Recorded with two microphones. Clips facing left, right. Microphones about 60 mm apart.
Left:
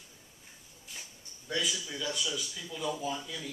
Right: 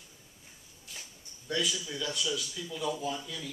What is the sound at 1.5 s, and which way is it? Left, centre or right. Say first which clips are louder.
Speech: right 1 dB; centre.